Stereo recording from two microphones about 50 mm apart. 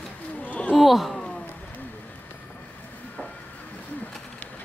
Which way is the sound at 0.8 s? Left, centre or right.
Centre.